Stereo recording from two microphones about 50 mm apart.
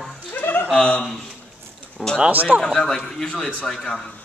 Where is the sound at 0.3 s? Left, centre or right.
Left.